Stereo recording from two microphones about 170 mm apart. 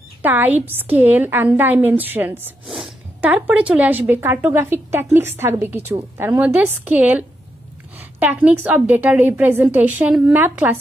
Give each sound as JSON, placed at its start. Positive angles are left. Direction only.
{"t": 0.2, "sound": "speech", "side_deg": -10}
{"t": 8.4, "sound": "speech", "side_deg": -10}